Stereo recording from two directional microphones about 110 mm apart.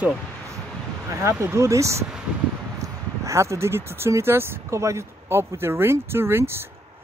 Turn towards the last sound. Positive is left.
turn(degrees=-20)  # may be behind; listen again after turning